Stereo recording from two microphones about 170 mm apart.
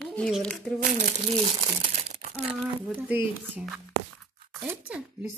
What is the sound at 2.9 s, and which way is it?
Speech, 10° right (ahead or behind).